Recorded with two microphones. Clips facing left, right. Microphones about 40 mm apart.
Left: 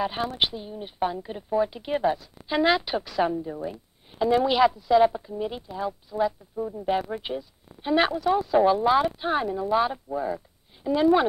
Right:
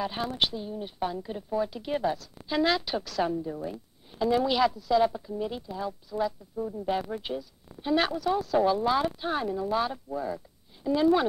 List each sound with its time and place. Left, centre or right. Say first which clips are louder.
0.0 s speech: left 3 dB; centre